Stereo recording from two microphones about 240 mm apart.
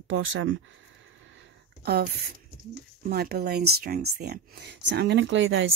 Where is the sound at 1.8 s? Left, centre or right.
Right.